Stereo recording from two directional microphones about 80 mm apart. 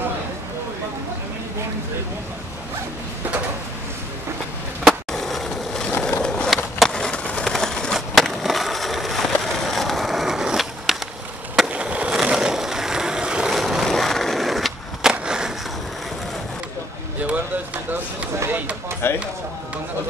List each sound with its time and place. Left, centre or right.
4.8 s skateboard: centre
12.3 s vehicle: centre
19.0 s a sound: left